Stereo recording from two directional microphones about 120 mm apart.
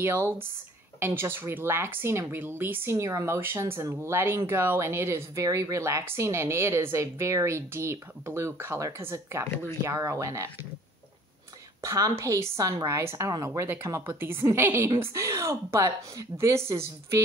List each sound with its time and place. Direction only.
0.0 s speech: 20° right (ahead or behind)
11.8 s speech: 25° right (ahead or behind)